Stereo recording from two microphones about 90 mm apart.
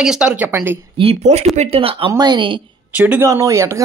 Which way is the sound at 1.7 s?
90° right.